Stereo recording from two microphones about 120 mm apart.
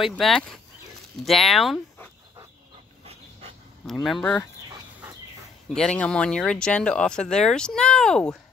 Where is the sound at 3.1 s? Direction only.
55° right (ahead or behind).